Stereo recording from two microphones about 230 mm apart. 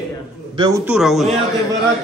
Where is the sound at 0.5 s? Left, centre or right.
Centre.